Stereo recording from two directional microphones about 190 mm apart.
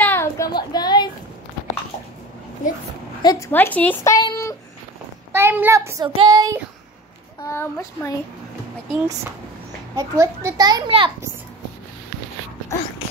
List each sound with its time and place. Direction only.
0.0 s a sound: 10° left (ahead or behind)
3.2 s a woman's voice: 20° left (ahead or behind)
5.3 s a child's voice: 10° right (ahead or behind)
7.4 s speech: 15° left (ahead or behind)
9.9 s a child's voice: 15° right (ahead or behind)